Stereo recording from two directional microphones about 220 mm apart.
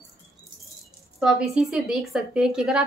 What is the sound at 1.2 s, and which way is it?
A woman's voice, centre (ahead or behind).